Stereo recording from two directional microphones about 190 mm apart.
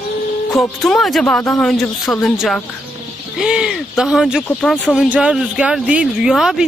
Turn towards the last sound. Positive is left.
turn(degrees=0)  # may be behind; listen again after turning